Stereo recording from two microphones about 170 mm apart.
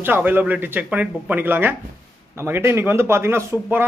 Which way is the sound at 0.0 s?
10° right (ahead or behind).